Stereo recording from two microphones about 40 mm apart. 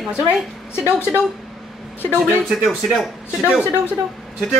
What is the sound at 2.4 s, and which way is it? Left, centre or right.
Music, centre.